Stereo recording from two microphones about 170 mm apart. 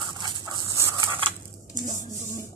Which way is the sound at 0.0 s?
25° right (ahead or behind).